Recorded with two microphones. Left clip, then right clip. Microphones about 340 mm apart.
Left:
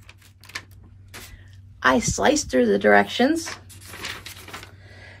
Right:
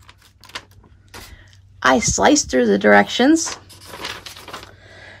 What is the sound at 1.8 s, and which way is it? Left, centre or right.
Speech, right.